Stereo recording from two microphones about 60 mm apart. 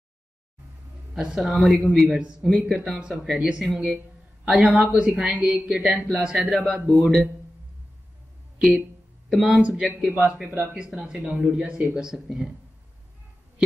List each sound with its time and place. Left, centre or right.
1.1 s a man's voice: centre
2.0 s a man's voice: centre
8.5 s a man's voice: centre
9.6 s a man's voice: centre